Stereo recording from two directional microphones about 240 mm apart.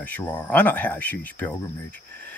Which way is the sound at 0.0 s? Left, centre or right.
Centre.